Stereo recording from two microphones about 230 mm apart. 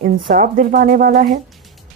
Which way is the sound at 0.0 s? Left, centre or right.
Right.